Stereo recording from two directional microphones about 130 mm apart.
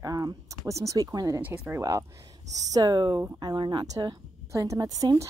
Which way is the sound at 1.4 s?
15° right (ahead or behind).